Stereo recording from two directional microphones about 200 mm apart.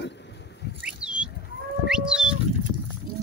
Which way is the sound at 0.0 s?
60° left (ahead or behind).